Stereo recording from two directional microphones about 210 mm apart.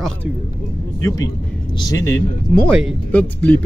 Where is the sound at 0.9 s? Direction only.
15° left (ahead or behind).